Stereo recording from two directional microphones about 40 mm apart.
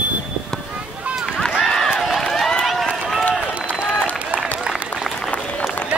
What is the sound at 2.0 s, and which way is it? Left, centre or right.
Run, centre.